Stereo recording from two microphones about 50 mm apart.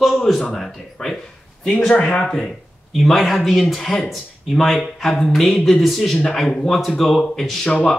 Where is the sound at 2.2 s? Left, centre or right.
Centre.